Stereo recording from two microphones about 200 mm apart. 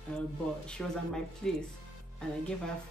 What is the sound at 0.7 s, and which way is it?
Speech, 5° left (ahead or behind).